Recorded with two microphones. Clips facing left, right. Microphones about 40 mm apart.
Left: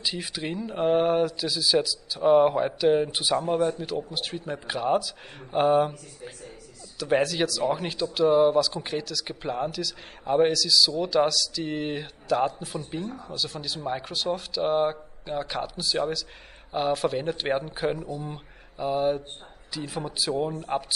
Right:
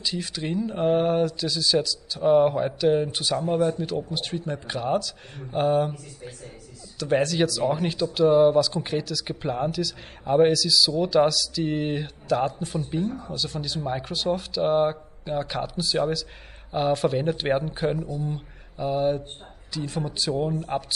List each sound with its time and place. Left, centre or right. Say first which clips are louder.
0.0 s speech: right 1 dB; centre
17.9 s speech: right 4 dB; left
18.8 s speech: right 1 dB; centre